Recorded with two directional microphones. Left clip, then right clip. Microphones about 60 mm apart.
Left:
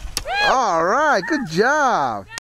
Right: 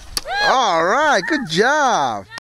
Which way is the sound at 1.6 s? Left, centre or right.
Right.